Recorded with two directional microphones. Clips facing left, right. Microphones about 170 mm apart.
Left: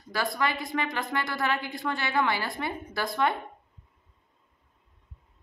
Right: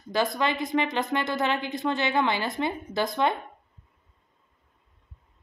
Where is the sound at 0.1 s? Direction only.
20° right (ahead or behind).